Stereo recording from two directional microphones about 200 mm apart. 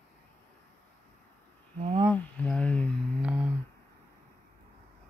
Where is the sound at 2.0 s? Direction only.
5° left (ahead or behind).